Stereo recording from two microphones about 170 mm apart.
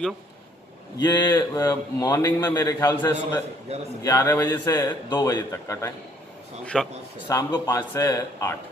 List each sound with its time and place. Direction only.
0.9 s a man's voice: 20° left (ahead or behind)
6.6 s a man's voice: 5° left (ahead or behind)
7.2 s speech: 20° left (ahead or behind)